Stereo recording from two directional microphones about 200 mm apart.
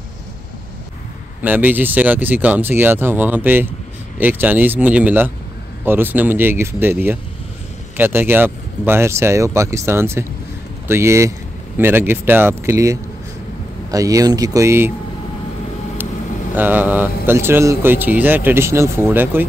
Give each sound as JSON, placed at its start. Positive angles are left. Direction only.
{"t": 1.4, "sound": "speech", "side_deg": -10}
{"t": 16.5, "sound": "speech", "side_deg": -10}